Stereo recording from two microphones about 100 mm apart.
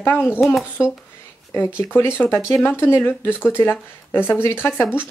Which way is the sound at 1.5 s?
20° left (ahead or behind).